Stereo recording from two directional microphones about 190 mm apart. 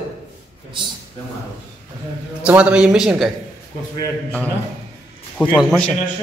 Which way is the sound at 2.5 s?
5° right (ahead or behind).